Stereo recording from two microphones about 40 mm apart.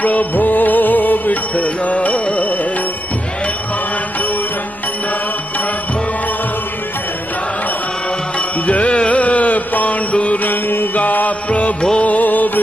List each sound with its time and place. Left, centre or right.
0.0 s music: left
8.6 s music: left
10.5 s mantra: left
11.0 s music: left